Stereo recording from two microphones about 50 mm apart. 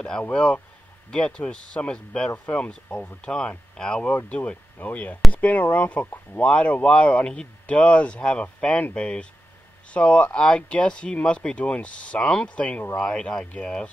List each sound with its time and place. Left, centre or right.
0.3 s speech: centre
2.3 s speech: left
4.3 s speech: left